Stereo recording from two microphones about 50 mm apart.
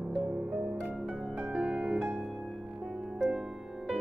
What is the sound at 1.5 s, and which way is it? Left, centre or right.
Music, right.